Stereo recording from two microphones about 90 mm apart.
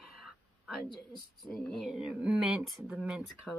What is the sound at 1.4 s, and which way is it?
Speech, centre (ahead or behind).